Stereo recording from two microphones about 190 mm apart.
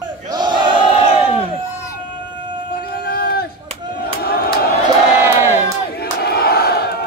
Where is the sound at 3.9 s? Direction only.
55° left (ahead or behind).